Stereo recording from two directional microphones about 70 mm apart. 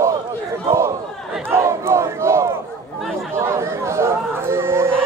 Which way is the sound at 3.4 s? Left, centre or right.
Right.